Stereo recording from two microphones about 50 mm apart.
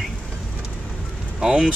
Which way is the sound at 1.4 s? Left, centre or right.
Centre.